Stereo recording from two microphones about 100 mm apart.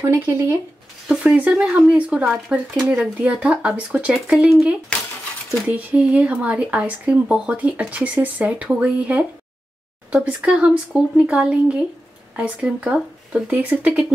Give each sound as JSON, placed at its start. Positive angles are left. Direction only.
{"t": 0.0, "sound": "speech", "side_deg": -25}
{"t": 1.0, "sound": "speech", "side_deg": -15}
{"t": 2.7, "sound": "speech", "side_deg": 0}
{"t": 6.1, "sound": "speech", "side_deg": -15}